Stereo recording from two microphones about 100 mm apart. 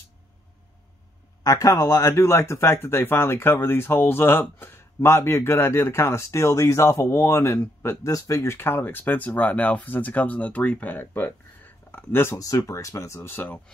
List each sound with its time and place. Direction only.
1.4 s speech: 35° left (ahead or behind)
12.4 s speech: 35° left (ahead or behind)